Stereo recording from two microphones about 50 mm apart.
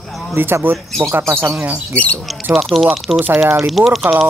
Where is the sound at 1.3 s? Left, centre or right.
Right.